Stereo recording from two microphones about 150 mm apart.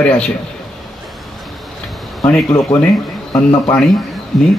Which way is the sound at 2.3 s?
10° left (ahead or behind).